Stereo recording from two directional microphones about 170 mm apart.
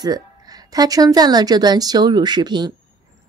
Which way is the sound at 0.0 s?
20° right (ahead or behind).